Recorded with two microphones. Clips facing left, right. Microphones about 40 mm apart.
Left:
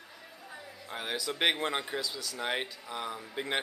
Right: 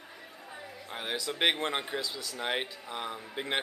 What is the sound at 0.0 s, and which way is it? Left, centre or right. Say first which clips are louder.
Chatter: right 2 dB; centre.